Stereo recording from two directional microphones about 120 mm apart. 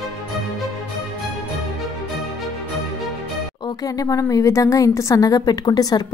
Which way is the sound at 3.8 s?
30° left (ahead or behind).